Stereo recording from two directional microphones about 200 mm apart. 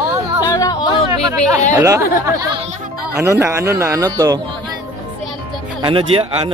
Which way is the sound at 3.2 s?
10° right (ahead or behind).